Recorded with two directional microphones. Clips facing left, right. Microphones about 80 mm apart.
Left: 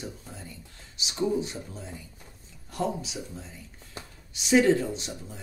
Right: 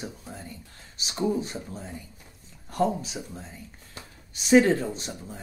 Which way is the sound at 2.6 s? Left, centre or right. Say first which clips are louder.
Right 5 dB; right.